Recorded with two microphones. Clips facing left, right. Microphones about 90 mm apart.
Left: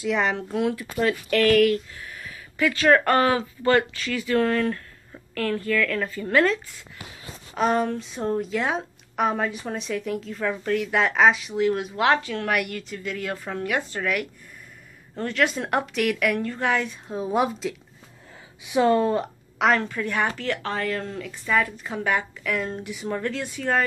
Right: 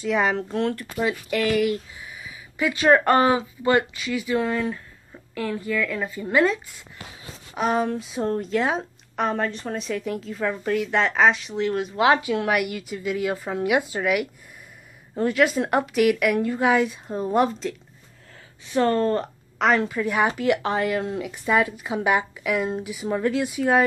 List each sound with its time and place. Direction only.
0.0 s a woman's voice: centre (ahead or behind)
0.9 s speech: 10° right (ahead or behind)
7.5 s a woman's voice: 5° right (ahead or behind)
19.7 s speech: 5° right (ahead or behind)